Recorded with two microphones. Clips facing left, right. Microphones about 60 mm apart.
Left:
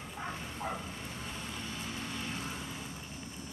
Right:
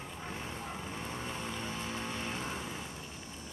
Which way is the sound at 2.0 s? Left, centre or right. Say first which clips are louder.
Right 1 dB; centre.